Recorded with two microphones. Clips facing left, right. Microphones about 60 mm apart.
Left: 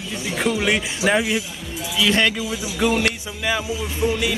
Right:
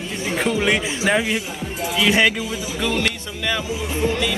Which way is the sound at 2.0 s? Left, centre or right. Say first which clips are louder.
Right 2 dB; centre.